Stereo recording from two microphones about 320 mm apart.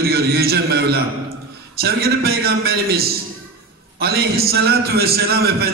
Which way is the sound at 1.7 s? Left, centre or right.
Right.